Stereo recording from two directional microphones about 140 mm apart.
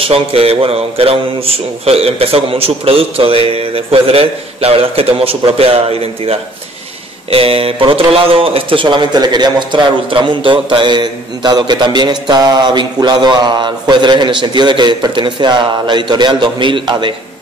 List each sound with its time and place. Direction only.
0.0 s speech: 40° right (ahead or behind)